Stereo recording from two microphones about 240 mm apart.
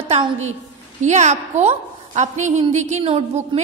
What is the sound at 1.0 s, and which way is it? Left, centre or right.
A woman's voice, right.